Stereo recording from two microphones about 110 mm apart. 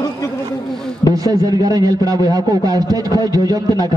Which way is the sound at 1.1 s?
35° right (ahead or behind).